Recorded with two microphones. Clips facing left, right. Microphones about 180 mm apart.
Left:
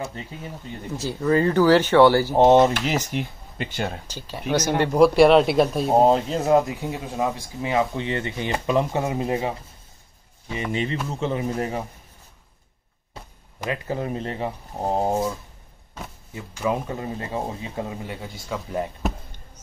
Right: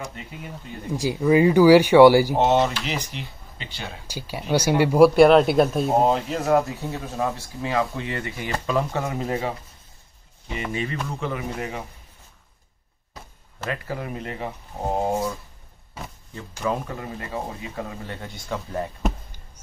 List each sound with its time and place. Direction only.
0.9 s speech: 10° right (ahead or behind)
2.3 s speech: 40° left (ahead or behind)
4.1 s speech: 10° right (ahead or behind)
5.9 s speech: 30° left (ahead or behind)
10.5 s speech: 20° left (ahead or behind)
13.6 s speech: 20° left (ahead or behind)
16.3 s speech: 15° left (ahead or behind)
19.0 s basketball bounce: centre (ahead or behind)